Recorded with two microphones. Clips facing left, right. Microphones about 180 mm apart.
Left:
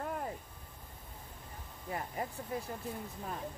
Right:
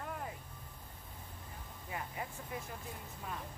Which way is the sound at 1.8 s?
40° left (ahead or behind).